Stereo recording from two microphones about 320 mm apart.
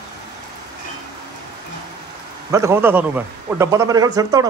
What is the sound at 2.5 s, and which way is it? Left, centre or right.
A man's voice, centre.